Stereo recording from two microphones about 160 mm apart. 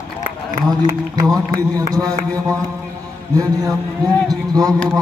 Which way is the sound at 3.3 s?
25° right (ahead or behind).